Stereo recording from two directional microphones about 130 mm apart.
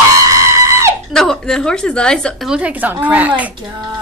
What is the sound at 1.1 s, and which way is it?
A woman's voice, 5° left (ahead or behind).